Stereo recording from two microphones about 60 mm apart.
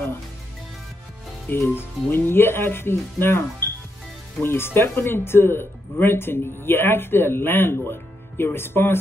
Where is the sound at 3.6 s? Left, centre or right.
Left.